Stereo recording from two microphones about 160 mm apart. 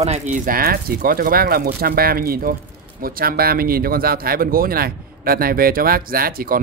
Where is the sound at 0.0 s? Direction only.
45° right (ahead or behind).